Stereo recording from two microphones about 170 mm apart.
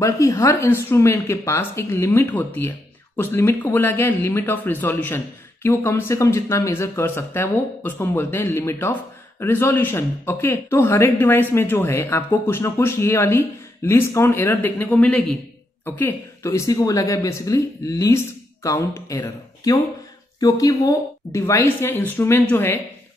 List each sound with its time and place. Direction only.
0.0 s speech: 20° left (ahead or behind)